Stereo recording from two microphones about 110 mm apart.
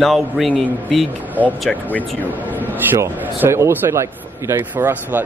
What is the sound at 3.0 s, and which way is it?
A man's voice, 25° right (ahead or behind).